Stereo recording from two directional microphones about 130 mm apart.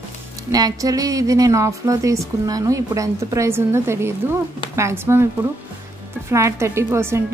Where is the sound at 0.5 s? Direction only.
30° right (ahead or behind).